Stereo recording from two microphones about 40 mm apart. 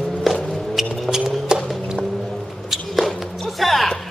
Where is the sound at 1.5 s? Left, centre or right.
Centre.